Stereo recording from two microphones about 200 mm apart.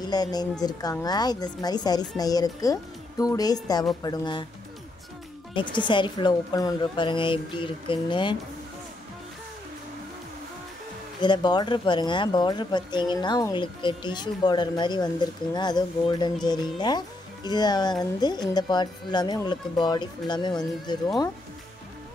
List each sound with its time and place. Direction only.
0.0 s speech: 20° left (ahead or behind)
5.6 s speech: 25° left (ahead or behind)
11.1 s speech: 20° left (ahead or behind)